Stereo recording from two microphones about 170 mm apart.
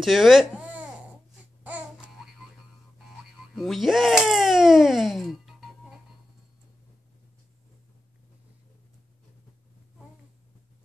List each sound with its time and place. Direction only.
0.0 s speech: centre (ahead or behind)
1.6 s babbling: 10° right (ahead or behind)
3.5 s speech: centre (ahead or behind)